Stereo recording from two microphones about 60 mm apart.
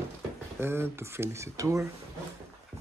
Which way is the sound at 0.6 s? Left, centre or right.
Right.